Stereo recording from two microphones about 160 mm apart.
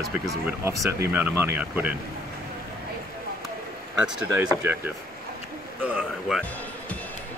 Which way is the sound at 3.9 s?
5° right (ahead or behind).